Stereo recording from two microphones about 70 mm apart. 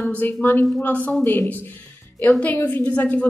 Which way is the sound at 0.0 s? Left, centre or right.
Left.